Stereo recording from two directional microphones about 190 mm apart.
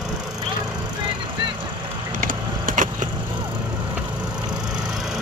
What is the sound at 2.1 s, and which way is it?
Vehicle, 45° right (ahead or behind).